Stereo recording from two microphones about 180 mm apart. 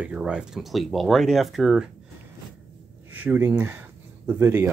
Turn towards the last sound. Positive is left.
turn(degrees=-10)  # may be behind; listen again after turning